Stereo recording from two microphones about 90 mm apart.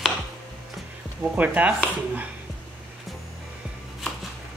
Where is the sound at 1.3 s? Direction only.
15° right (ahead or behind).